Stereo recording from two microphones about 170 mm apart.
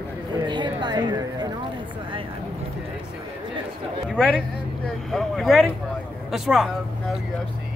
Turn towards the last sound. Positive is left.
turn(degrees=0)  # may be behind; listen again after turning